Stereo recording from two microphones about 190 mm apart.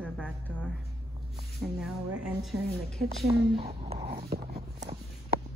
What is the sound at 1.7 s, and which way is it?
A woman's voice, centre (ahead or behind).